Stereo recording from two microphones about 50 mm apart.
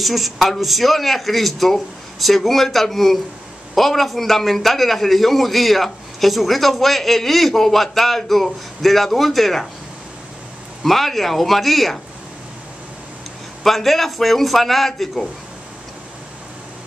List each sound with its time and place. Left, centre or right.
0.0 s a man's voice: centre
10.8 s a man's voice: centre
13.7 s a man's voice: centre